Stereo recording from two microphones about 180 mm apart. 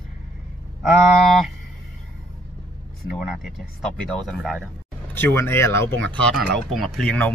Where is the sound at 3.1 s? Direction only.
Centre (ahead or behind).